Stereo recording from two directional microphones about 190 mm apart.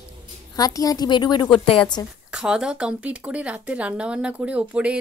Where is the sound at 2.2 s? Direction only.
5° right (ahead or behind).